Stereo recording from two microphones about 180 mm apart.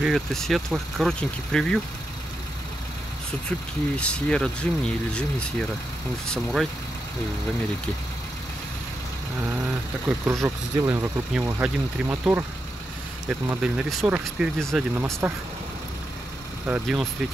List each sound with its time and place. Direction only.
0.0 s speech: centre (ahead or behind)
3.4 s speech: 5° left (ahead or behind)
10.1 s speech: 5° right (ahead or behind)
10.4 s speech: 15° right (ahead or behind)
16.6 s speech: 5° right (ahead or behind)